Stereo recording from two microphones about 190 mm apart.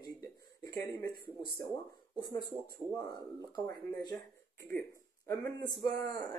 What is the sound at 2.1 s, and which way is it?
Speech, 20° left (ahead or behind).